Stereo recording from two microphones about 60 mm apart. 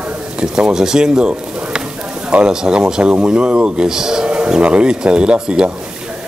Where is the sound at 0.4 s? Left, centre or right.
Centre.